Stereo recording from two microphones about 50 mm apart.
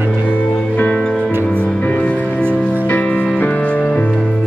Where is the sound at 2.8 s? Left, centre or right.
Left.